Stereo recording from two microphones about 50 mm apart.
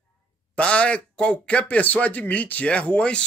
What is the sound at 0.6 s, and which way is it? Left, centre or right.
Speech, left.